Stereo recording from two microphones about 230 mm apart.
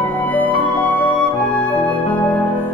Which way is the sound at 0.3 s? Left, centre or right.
Centre.